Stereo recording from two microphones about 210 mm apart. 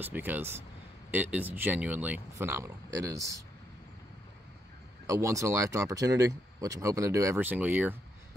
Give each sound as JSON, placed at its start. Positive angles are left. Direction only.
{"t": 0.0, "sound": "speech", "side_deg": -10}
{"t": 5.0, "sound": "speech", "side_deg": -15}